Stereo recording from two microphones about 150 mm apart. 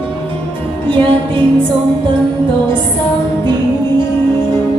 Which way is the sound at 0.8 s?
35° right (ahead or behind).